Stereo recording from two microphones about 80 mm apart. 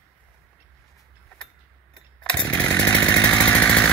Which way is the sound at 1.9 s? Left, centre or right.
Centre.